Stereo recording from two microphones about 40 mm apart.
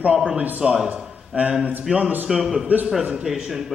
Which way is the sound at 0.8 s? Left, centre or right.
Right.